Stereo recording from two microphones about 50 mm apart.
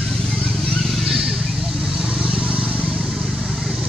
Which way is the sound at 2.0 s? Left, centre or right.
Centre.